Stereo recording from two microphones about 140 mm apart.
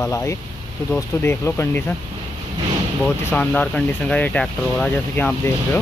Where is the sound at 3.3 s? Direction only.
5° left (ahead or behind).